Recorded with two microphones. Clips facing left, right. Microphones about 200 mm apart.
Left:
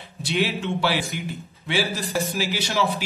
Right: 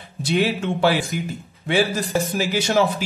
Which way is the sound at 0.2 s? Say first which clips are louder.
Right 4 dB; 45° right (ahead or behind).